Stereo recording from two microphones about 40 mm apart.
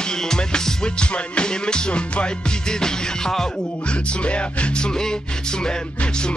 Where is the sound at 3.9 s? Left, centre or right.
Left.